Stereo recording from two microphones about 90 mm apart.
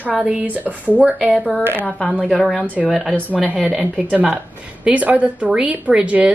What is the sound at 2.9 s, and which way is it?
Speech, centre (ahead or behind).